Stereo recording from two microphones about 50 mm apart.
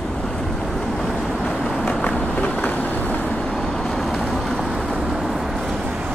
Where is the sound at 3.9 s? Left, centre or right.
Centre.